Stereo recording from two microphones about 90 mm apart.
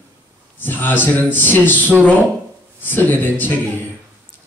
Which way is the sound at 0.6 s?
20° left (ahead or behind).